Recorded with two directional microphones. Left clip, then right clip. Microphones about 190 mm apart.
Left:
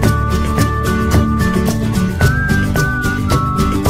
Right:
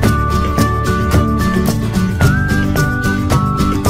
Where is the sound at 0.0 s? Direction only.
Centre (ahead or behind).